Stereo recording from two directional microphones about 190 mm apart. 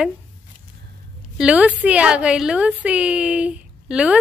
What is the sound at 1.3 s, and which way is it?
A woman's voice, 5° right (ahead or behind).